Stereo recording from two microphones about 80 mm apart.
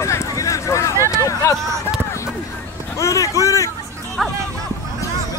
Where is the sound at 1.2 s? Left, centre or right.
Left.